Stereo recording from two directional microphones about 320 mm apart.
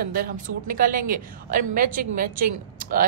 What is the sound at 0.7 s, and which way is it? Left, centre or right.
Speech, right.